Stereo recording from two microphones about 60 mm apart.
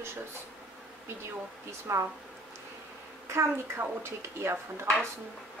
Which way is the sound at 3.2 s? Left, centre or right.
Right.